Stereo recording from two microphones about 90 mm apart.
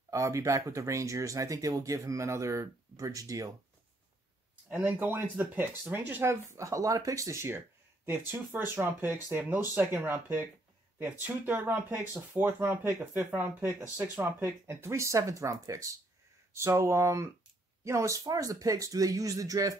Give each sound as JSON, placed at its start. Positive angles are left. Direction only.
{"t": 0.1, "sound": "speech", "side_deg": -35}
{"t": 4.6, "sound": "speech", "side_deg": -15}